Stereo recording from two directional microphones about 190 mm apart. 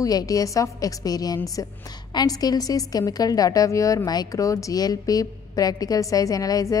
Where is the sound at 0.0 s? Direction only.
20° left (ahead or behind).